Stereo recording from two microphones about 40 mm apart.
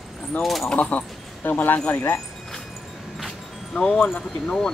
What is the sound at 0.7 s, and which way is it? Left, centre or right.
Speech, left.